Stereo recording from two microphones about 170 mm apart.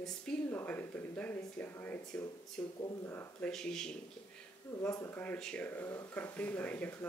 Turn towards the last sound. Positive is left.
turn(degrees=10)  # may be behind; listen again after turning